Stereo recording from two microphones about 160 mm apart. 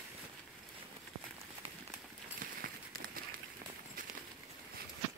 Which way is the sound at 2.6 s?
65° right (ahead or behind).